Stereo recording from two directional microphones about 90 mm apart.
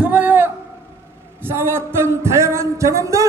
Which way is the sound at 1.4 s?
25° right (ahead or behind).